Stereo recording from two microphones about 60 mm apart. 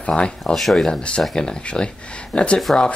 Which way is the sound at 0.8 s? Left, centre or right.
Centre.